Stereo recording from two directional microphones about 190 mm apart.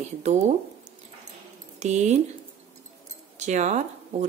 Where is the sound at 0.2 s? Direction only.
35° right (ahead or behind).